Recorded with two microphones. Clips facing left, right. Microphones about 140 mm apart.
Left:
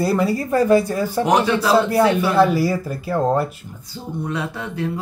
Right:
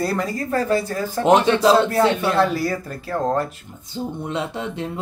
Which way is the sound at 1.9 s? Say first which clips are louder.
Left 2 dB; 10° left (ahead or behind).